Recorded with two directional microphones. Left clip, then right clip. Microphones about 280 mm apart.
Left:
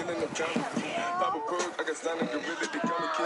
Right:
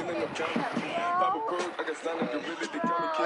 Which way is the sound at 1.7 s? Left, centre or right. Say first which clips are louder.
Left 1 dB; centre.